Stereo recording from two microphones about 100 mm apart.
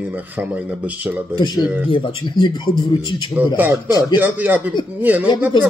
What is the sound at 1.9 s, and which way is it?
Speech, 60° left (ahead or behind).